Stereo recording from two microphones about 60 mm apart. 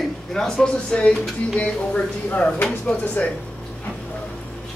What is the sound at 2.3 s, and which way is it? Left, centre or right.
Speech, left.